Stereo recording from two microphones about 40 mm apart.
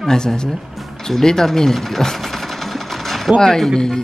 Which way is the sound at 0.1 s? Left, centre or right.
Centre.